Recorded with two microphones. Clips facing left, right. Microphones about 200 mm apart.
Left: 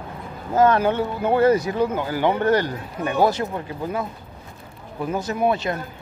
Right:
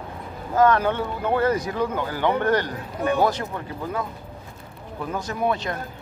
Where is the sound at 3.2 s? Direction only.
10° left (ahead or behind).